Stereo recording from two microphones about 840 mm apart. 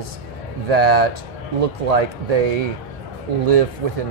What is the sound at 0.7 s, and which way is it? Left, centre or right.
Speech, right.